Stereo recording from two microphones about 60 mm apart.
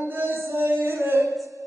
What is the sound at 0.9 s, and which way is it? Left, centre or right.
Music, right.